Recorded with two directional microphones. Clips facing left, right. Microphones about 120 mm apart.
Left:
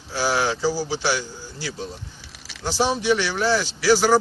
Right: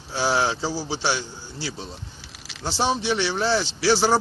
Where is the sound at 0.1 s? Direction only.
25° right (ahead or behind).